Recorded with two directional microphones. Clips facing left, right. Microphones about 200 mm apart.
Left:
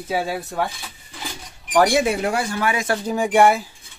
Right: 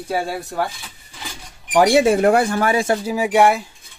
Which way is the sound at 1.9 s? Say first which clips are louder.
Right 5 dB; 40° right (ahead or behind).